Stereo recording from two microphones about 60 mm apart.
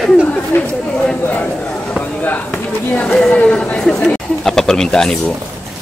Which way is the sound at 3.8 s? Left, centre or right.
Centre.